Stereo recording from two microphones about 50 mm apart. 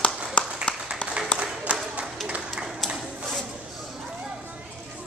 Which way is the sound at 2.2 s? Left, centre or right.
Right.